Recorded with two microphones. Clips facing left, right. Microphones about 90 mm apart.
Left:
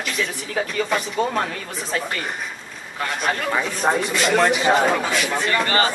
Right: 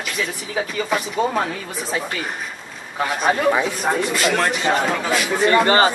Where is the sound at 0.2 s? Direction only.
5° right (ahead or behind).